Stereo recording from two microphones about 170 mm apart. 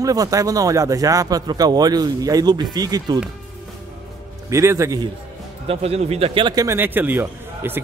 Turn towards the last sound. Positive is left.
turn(degrees=-10)  # may be behind; listen again after turning